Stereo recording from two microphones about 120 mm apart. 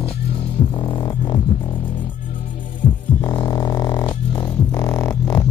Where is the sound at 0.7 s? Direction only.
40° left (ahead or behind).